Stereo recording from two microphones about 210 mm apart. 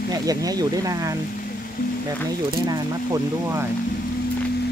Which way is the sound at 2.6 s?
15° right (ahead or behind).